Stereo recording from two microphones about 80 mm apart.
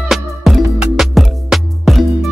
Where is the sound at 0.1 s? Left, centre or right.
Centre.